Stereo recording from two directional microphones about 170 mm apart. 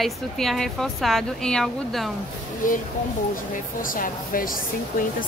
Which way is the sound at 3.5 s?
55° left (ahead or behind).